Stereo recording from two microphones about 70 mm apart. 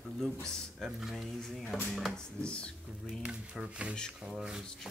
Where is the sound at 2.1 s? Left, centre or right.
Centre.